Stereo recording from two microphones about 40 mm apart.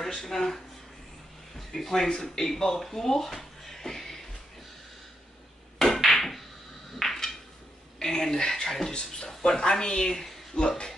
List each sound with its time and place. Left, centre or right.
0.0 s speech: centre
1.6 s speech: centre
2.0 s speech: centre
6.0 s a sound: centre
8.0 s speech: centre